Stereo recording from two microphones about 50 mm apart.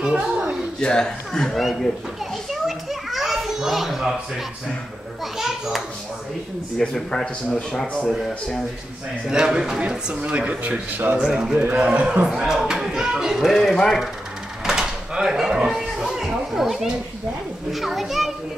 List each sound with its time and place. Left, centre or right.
0.0 s a sound: centre
0.7 s speech: centre
1.6 s a child's voice: centre
2.5 s children playing: centre
5.2 s a child's voice: centre
6.9 s speech: centre
9.3 s speech: centre; by 11.1 s right
11.1 s speech: centre
12.4 s speech: centre
14.6 s a sound: centre
17.7 s a child's voice: centre